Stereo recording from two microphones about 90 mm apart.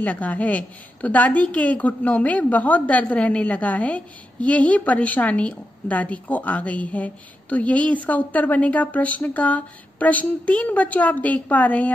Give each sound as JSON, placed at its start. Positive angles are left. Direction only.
{"t": 0.0, "sound": "a woman's voice", "side_deg": 20}